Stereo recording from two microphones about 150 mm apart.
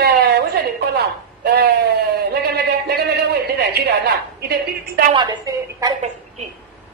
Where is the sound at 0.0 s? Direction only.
90° right.